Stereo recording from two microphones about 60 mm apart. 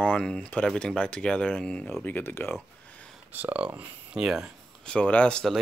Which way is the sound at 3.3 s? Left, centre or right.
Right.